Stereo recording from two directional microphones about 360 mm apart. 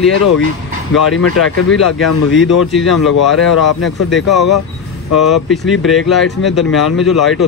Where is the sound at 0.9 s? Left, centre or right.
Left.